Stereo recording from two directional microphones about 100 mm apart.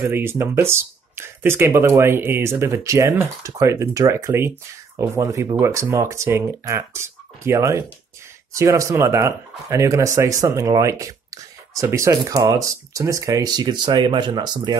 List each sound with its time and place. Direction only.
0.0 s speech: 20° right (ahead or behind); by 14.8 s 45° right (ahead or behind)